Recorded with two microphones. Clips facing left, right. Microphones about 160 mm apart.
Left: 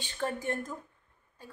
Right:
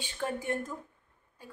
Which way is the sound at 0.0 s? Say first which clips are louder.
Left 1 dB; 10° right (ahead or behind).